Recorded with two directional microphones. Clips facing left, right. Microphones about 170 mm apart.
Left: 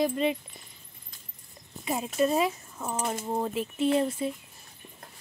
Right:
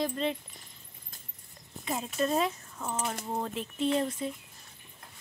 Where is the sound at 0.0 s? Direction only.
10° left (ahead or behind).